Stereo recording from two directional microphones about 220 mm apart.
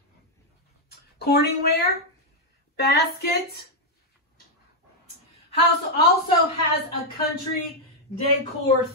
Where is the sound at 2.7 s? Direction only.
45° left (ahead or behind).